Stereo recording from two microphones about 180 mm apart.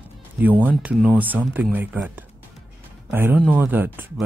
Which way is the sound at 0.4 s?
10° right (ahead or behind).